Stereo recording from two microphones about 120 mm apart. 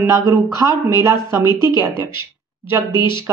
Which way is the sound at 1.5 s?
35° left (ahead or behind).